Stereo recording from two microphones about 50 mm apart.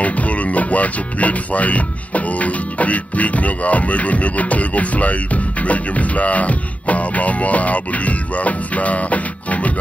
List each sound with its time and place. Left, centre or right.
0.0 s speech: left